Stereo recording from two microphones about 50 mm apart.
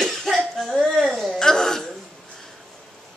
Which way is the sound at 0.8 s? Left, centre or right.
Centre.